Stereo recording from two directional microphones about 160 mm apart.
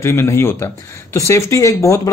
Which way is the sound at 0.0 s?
15° left (ahead or behind).